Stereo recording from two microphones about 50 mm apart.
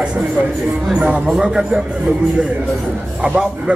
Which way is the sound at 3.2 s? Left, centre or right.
Centre.